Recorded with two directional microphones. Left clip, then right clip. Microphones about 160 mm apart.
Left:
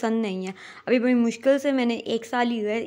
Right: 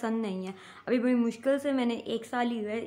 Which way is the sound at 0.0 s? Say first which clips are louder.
Left 7 dB; 40° left (ahead or behind).